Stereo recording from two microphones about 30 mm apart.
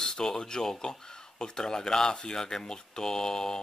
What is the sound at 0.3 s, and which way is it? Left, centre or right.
Speech, left.